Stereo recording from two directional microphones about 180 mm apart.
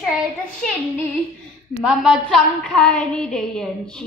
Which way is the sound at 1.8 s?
5° right (ahead or behind).